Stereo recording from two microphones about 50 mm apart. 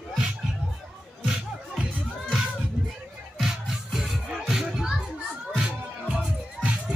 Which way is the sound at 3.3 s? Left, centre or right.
Centre.